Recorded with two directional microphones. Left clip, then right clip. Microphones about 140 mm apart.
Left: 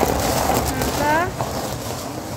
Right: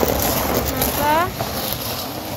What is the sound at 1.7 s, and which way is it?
Vehicle, 60° left (ahead or behind).